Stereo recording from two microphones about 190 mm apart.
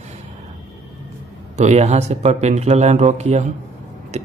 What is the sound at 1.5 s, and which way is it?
Speech, 35° right (ahead or behind).